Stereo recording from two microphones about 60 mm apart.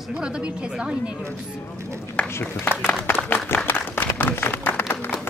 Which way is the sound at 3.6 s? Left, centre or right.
Left.